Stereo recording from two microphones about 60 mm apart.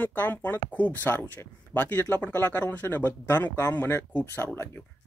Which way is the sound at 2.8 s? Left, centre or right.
Left.